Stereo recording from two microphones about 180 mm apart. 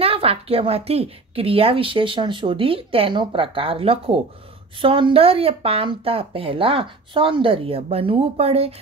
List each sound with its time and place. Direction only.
0.0 s a woman's voice: 30° right (ahead or behind)